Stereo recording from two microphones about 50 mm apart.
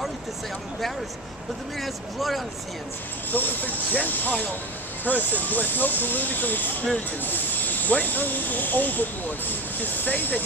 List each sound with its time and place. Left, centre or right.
1.8 s speech: centre
3.3 s speech: left